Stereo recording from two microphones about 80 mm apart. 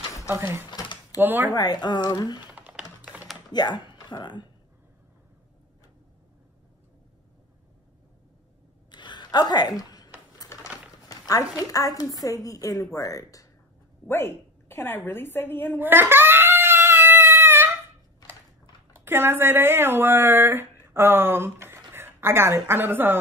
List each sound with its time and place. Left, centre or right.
0.3 s speech: right
1.5 s speech: left
2.4 s typing: centre
3.5 s speech: left
8.9 s a sound: left
10.4 s sewing machine: left
11.1 s a sound: left
11.7 s a woman's voice: left
14.0 s a woman's voice: left
15.8 s cat: right
18.9 s speech: right